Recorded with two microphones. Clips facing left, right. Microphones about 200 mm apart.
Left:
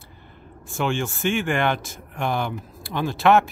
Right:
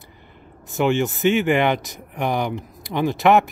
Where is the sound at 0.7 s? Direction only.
20° right (ahead or behind).